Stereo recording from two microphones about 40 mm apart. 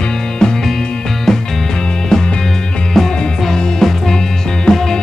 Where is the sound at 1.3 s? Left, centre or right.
Centre.